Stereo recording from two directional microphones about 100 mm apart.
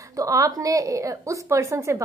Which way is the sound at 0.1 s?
35° right (ahead or behind).